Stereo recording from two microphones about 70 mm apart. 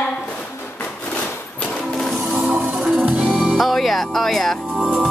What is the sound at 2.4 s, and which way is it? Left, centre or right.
Music, centre.